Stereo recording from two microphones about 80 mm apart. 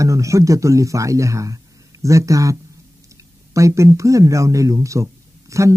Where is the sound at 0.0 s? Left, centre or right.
Right.